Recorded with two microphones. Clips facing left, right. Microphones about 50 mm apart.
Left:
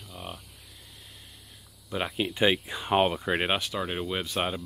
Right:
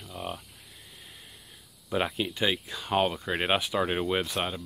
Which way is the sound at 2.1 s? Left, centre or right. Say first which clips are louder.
Left 4 dB; centre.